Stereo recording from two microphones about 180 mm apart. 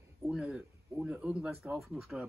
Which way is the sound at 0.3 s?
5° right (ahead or behind).